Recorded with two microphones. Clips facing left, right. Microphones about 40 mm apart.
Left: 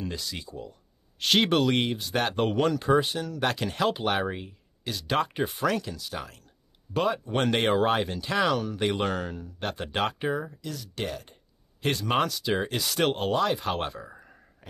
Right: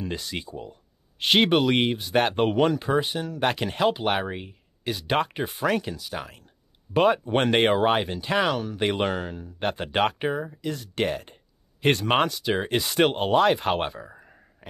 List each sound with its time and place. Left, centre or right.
0.1 s speech: right
1.5 s speech: centre
5.3 s speech: centre
5.7 s speech: right
5.9 s speech: centre
6.9 s speech: right
7.7 s speech: centre
9.6 s speech: right
10.2 s speech: centre
10.6 s speech: right
13.3 s speech: right
13.8 s speech: centre
14.6 s a sound: right